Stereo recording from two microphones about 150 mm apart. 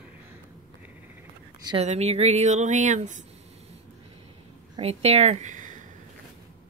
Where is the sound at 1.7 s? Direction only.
45° right (ahead or behind).